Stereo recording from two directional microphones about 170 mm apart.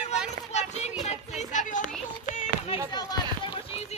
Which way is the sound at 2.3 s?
45° left (ahead or behind).